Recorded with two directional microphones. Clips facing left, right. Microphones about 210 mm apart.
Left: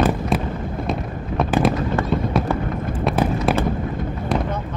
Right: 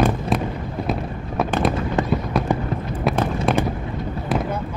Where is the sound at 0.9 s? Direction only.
Centre (ahead or behind).